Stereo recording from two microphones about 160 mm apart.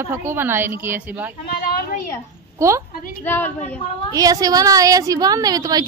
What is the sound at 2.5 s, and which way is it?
Speech, 20° right (ahead or behind).